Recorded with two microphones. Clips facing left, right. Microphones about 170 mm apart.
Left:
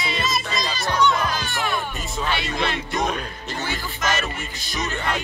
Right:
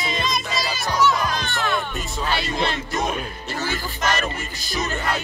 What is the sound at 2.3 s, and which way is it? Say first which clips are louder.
Music: right 1 dB; 35° right (ahead or behind).